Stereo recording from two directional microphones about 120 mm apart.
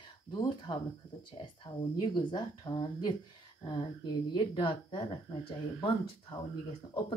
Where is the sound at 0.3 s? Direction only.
40° left (ahead or behind).